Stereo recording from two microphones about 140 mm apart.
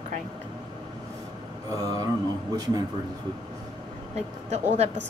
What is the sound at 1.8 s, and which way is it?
Mantra, 25° right (ahead or behind).